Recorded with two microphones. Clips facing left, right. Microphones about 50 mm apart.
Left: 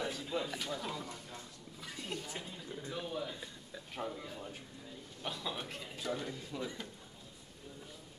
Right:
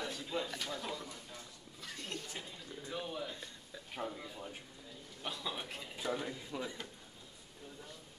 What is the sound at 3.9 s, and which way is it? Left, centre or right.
A man's voice, centre.